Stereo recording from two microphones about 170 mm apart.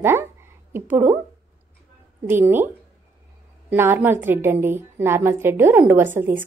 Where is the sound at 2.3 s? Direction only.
10° right (ahead or behind).